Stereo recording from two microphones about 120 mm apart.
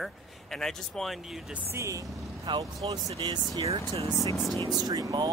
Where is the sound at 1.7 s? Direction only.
25° right (ahead or behind).